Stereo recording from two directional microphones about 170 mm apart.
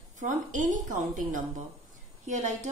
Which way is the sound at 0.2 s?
50° right (ahead or behind).